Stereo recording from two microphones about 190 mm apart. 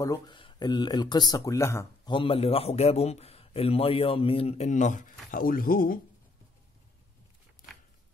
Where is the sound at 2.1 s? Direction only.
30° left (ahead or behind); by 5.9 s 50° left (ahead or behind).